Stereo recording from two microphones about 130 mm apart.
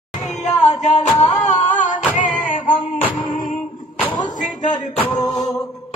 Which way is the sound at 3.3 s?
85° left.